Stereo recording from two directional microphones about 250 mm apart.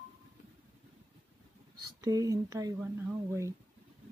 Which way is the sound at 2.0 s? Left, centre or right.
Centre.